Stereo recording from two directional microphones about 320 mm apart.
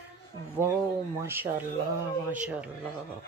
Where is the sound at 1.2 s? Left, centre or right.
Centre.